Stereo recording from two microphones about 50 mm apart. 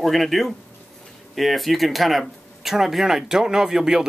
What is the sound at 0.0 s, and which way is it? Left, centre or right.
Speech, centre.